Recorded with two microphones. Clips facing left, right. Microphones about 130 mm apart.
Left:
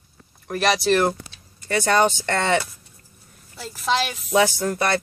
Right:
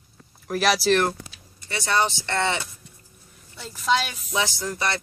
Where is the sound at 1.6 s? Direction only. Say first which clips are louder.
Left 5 dB; 50° left (ahead or behind).